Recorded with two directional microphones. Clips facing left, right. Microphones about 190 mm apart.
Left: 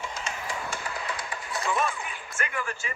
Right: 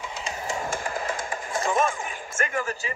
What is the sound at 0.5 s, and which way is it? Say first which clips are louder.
Speech: right 8 dB; 45° right (ahead or behind).